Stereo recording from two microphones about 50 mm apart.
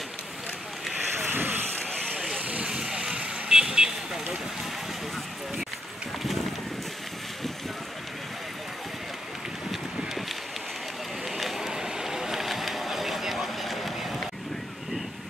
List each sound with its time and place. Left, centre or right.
1.2 s vehicle: right
2.4 s vehicle: right
2.7 s vehicle: centre
11.2 s vehicle: centre